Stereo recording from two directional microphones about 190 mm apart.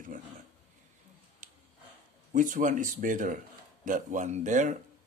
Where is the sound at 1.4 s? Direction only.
40° right (ahead or behind).